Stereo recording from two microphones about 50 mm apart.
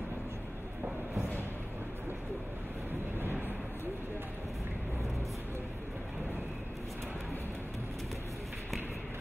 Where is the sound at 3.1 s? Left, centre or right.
Right.